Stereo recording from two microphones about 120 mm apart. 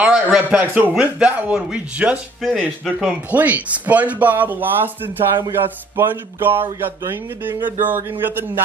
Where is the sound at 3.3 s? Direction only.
15° right (ahead or behind).